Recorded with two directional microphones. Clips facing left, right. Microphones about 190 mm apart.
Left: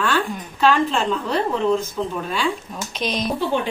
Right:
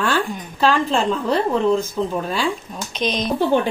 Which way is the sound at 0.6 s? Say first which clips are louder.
Even; 35° right (ahead or behind).